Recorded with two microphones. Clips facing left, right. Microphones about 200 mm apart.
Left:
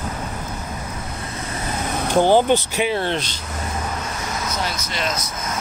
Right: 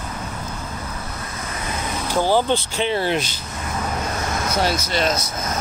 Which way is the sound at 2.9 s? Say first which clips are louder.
Right 4 dB; 5° right (ahead or behind).